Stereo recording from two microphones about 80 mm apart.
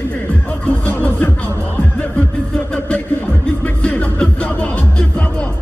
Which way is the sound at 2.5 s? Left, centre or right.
Centre.